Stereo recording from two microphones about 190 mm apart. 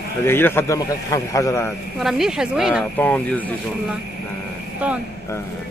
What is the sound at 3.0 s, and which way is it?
Speech, 10° left (ahead or behind).